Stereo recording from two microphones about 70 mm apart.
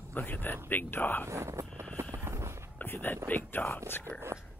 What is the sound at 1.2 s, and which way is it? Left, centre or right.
Vehicle, right.